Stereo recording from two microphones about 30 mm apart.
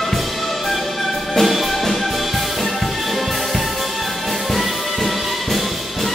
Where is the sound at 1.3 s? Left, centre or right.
Centre.